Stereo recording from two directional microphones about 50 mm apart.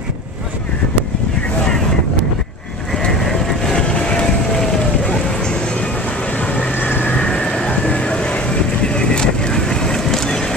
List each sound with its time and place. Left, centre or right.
2.9 s vehicle: centre
3.8 s vehicle: left
6.7 s vehicle: left
7.2 s vehicle: centre